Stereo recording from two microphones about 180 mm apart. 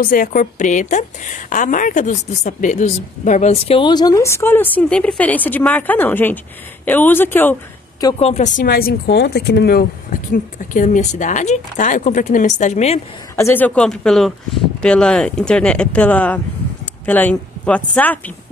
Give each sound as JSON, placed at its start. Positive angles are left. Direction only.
{"t": 0.0, "sound": "a woman's voice", "side_deg": 50}
{"t": 8.2, "sound": "speech", "side_deg": 35}
{"t": 13.4, "sound": "speech", "side_deg": 10}